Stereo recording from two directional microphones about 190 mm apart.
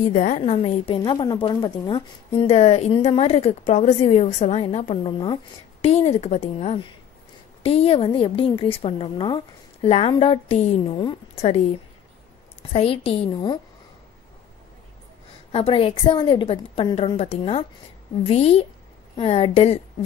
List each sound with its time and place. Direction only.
0.0 s a woman's voice: 40° left (ahead or behind)
0.4 s a woman's voice: 30° left (ahead or behind)
12.7 s a woman's voice: 30° left (ahead or behind)
15.5 s a woman's voice: 30° left (ahead or behind)